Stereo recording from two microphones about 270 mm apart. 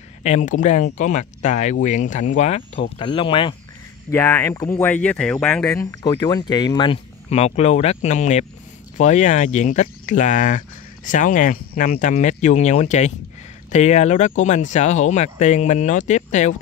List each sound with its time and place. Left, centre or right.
0.2 s speech: left